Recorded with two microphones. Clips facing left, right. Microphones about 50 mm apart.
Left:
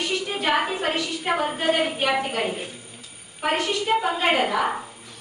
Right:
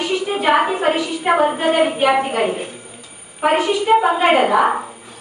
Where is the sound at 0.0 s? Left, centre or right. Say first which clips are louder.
Right 7 dB; centre.